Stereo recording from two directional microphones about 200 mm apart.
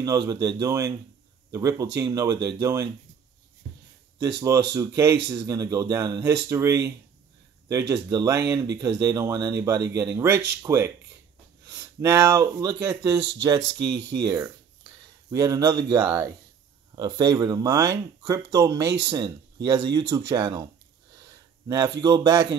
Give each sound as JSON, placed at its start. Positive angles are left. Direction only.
{"t": 0.0, "sound": "speech", "side_deg": -15}
{"t": 4.4, "sound": "speech", "side_deg": -15}
{"t": 7.9, "sound": "speech", "side_deg": -20}
{"t": 13.7, "sound": "speech", "side_deg": -60}
{"t": 14.2, "sound": "speech", "side_deg": -15}
{"t": 21.6, "sound": "speech", "side_deg": -15}